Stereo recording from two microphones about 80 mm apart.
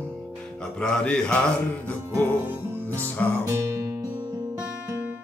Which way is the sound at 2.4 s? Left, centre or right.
Right.